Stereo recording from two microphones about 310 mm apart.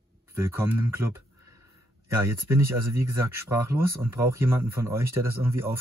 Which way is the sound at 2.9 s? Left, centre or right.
Right.